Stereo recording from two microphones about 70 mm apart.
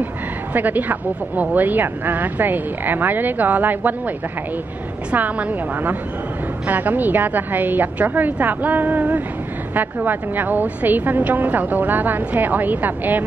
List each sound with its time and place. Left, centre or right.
0.5 s speech: right
5.1 s speech: right